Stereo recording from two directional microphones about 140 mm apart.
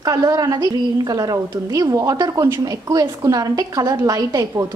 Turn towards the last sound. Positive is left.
turn(degrees=-25)  # may be behind; listen again after turning